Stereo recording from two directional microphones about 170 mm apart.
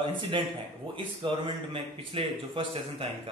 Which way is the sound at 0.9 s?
30° right (ahead or behind).